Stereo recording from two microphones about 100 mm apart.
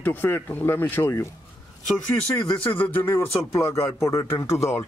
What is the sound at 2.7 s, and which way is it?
Speech, 20° left (ahead or behind).